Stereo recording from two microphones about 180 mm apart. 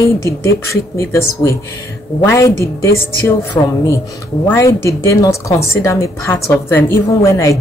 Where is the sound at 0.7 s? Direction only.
15° left (ahead or behind).